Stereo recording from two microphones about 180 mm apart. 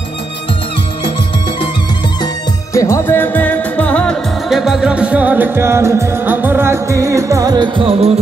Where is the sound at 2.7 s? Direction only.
15° left (ahead or behind).